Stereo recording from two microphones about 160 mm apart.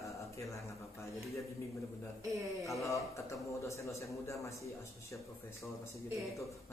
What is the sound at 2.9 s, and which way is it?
A man's voice, 20° left (ahead or behind).